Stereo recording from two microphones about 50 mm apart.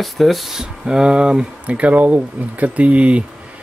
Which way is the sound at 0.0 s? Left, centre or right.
Centre.